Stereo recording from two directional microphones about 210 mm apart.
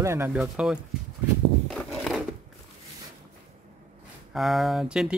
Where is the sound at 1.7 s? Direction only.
Centre (ahead or behind).